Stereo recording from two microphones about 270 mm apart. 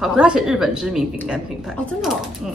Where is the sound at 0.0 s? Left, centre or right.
Centre.